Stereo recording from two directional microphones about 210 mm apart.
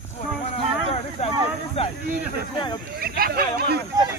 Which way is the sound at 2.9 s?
45° right (ahead or behind).